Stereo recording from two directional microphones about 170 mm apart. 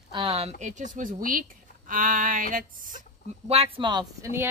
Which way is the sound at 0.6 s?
45° right (ahead or behind).